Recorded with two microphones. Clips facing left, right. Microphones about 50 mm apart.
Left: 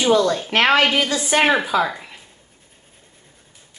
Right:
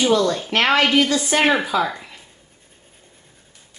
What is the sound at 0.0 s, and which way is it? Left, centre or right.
Speech, centre.